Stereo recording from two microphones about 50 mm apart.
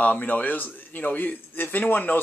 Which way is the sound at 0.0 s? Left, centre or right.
Left.